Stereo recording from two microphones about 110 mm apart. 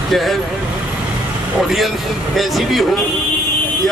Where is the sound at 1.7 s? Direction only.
Centre (ahead or behind).